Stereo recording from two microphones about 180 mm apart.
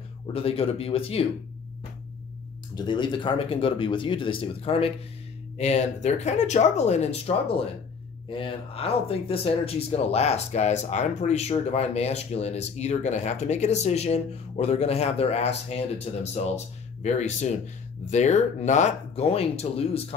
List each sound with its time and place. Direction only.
0.3 s speech: 30° left (ahead or behind)
2.7 s speech: 25° left (ahead or behind)